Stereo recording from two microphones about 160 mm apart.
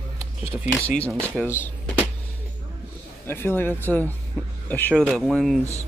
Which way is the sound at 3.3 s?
15° left (ahead or behind).